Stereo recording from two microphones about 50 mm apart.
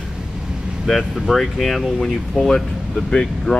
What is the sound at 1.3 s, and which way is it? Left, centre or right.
Speech, centre.